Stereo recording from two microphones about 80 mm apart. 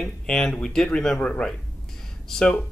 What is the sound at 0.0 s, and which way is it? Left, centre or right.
Speech, centre.